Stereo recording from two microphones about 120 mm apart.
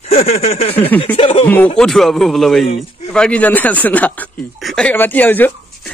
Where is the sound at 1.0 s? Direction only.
50° left (ahead or behind).